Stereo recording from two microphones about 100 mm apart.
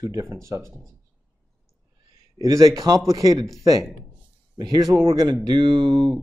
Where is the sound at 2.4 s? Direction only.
35° right (ahead or behind).